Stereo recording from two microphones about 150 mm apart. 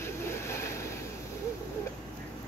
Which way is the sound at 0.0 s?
15° left (ahead or behind).